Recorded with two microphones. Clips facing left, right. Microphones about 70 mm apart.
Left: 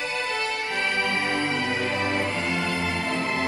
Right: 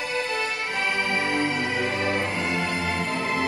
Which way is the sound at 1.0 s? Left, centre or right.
Right.